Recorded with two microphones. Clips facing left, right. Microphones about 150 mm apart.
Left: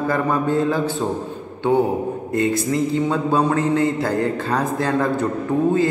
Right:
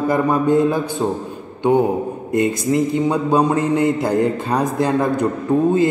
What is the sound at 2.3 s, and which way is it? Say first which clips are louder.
A man's voice: right 3 dB; 20° right (ahead or behind).